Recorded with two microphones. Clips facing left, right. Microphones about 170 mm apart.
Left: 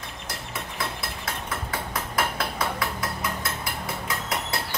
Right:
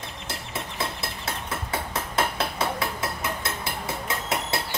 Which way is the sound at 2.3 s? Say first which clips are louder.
Right 1 dB; 25° right (ahead or behind).